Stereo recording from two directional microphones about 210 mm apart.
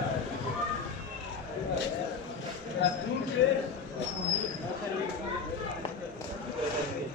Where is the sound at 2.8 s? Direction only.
55° left (ahead or behind).